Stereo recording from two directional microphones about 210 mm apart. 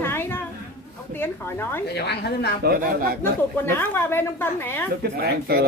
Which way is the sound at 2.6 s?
45° right (ahead or behind).